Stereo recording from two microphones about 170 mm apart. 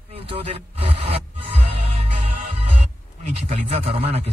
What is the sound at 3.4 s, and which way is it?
Speech, 35° right (ahead or behind).